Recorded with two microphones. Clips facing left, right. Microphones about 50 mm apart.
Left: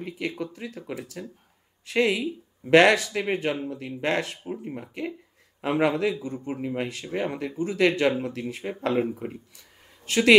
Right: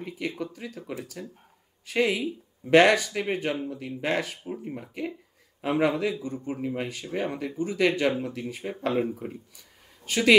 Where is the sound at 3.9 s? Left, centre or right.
Centre.